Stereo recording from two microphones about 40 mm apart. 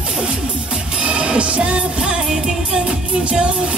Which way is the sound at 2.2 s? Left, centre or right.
Centre.